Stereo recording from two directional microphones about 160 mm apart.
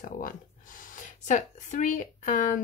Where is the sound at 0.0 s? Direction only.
55° left (ahead or behind).